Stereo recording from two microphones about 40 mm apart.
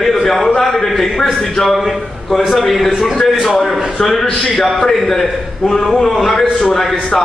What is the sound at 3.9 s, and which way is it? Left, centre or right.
A man's voice, centre.